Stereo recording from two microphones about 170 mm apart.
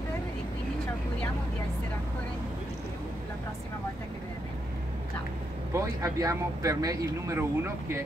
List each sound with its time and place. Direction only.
5.7 s speech: 20° right (ahead or behind)